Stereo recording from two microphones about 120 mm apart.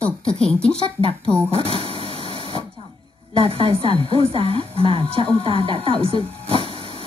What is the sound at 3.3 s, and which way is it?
A woman's voice, 50° right (ahead or behind).